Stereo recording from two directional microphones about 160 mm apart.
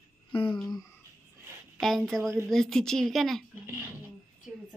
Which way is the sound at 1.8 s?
Centre (ahead or behind).